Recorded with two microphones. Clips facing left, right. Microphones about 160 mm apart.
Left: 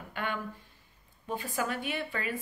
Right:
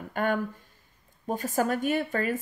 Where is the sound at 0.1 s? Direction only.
45° right (ahead or behind).